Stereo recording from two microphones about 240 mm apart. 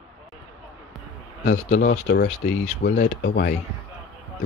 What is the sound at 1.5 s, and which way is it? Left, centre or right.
Speech, left.